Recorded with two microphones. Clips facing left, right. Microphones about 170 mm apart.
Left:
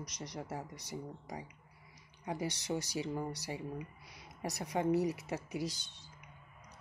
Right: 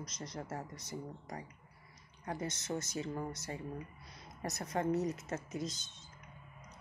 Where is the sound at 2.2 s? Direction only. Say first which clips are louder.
Left 2 dB; 15° left (ahead or behind).